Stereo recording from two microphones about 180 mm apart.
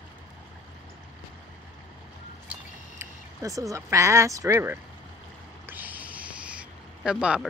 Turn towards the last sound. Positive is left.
turn(degrees=-5)  # may be behind; listen again after turning